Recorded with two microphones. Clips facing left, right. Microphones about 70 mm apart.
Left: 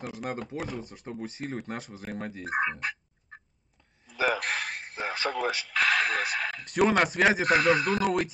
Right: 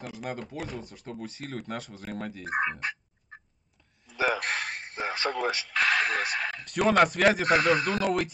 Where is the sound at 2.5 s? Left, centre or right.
Centre.